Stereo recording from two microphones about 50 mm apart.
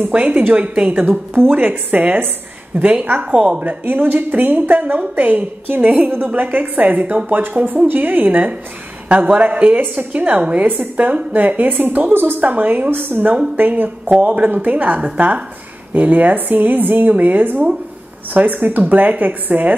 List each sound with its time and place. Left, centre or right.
0.4 s a woman's voice: right
3.3 s a woman's voice: right
3.8 s a woman's voice: right